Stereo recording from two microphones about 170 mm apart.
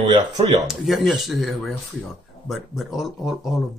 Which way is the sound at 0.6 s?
Centre (ahead or behind).